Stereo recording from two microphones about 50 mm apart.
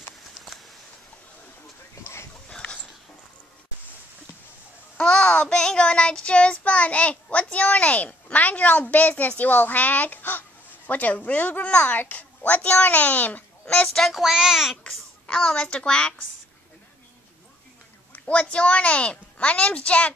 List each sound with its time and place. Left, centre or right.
4.9 s child singing: centre
9.4 s a child's voice: left
13.9 s speech: centre
14.3 s speech: centre
15.2 s a woman's voice: centre
18.1 s a woman's voice: left